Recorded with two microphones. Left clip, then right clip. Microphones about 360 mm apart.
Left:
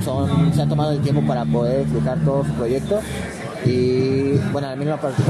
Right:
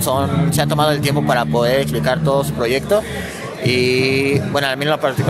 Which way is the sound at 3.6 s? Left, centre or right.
Right.